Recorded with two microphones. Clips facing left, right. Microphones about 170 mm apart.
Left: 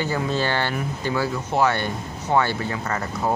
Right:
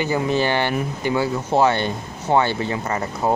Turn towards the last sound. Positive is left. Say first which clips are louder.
# right 3 dB
turn(degrees=-20)  # may be behind; listen again after turning